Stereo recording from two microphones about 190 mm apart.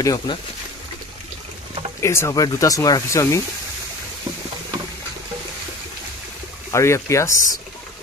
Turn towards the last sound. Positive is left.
turn(degrees=15)  # may be behind; listen again after turning